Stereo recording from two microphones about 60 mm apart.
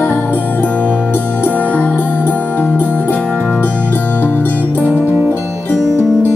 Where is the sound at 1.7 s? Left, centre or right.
Left.